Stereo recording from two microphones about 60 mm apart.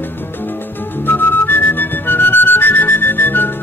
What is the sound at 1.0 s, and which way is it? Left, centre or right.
Music, left.